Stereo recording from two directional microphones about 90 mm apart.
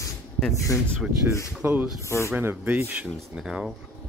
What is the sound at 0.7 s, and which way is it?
Speech, 35° left (ahead or behind).